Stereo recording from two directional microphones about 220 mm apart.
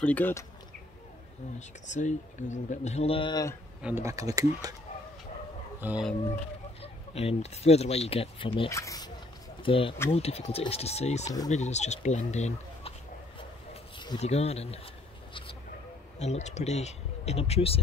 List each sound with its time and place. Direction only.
0.0 s speech: 10° left (ahead or behind)
1.9 s speech: 35° left (ahead or behind); by 3.5 s 20° left (ahead or behind)
3.8 s speech: 10° right (ahead or behind)
5.8 s speech: 5° right (ahead or behind)
6.8 s speech: 25° left (ahead or behind)
13.9 s speech: 20° left (ahead or behind)
16.2 s speech: 30° left (ahead or behind)